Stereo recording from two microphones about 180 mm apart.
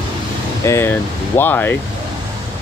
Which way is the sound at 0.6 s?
15° left (ahead or behind).